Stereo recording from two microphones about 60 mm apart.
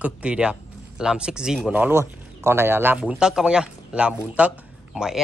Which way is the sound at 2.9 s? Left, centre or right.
Centre.